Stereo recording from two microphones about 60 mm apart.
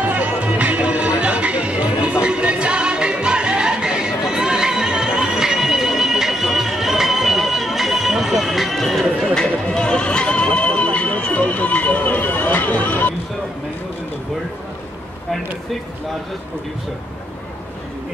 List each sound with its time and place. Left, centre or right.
0.0 s music: right; by 9.3 s centre
9.5 s neigh: centre